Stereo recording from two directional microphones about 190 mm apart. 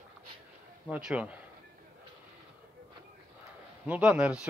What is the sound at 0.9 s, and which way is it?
Speech, 5° right (ahead or behind).